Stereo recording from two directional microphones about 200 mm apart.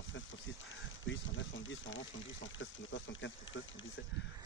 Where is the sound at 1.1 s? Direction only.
70° left (ahead or behind).